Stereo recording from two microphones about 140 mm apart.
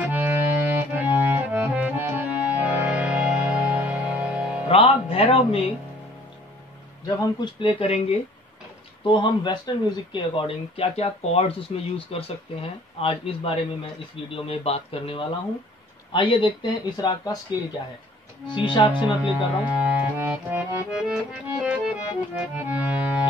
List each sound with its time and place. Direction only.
0.1 s accordion: 15° right (ahead or behind)
4.6 s speech: 45° left (ahead or behind)
7.1 s speech: 25° left (ahead or behind)
7.6 s speech: 45° left (ahead or behind)
9.0 s speech: 35° left (ahead or behind)
18.5 s speech: 35° left (ahead or behind)
18.9 s speech: 10° right (ahead or behind)